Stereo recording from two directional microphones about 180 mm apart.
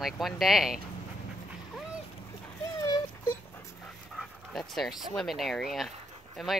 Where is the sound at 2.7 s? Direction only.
20° left (ahead or behind).